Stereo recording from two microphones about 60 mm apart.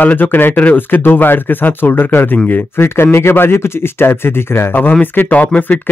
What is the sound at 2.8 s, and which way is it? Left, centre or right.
Speech, left.